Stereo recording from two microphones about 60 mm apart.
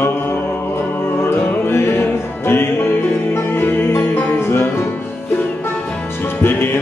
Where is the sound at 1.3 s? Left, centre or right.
Left.